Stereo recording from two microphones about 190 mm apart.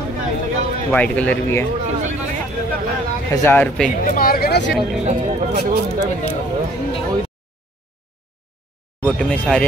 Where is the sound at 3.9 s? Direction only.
50° left (ahead or behind).